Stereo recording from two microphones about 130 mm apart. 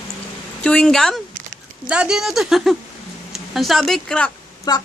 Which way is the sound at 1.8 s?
5° right (ahead or behind).